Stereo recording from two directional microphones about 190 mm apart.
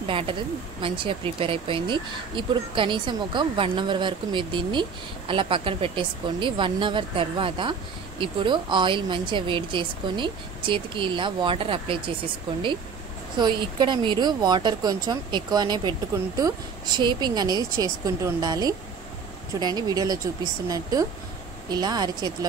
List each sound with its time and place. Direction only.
0.0 s speech: 30° right (ahead or behind)
13.4 s speech: 25° right (ahead or behind)